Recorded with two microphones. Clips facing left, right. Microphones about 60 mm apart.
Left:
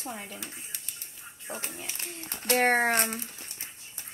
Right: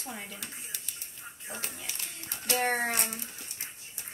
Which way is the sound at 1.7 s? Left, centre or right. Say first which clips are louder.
Left 3 dB; left.